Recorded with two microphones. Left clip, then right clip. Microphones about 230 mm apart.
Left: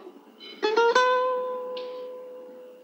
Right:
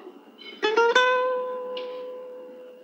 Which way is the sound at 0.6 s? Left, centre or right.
Left.